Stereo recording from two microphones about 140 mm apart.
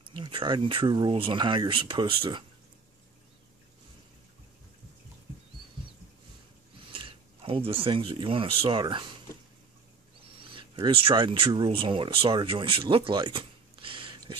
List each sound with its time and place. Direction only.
0.0 s speech: 35° right (ahead or behind)
6.9 s speech: 40° right (ahead or behind)
10.4 s speech: 35° right (ahead or behind)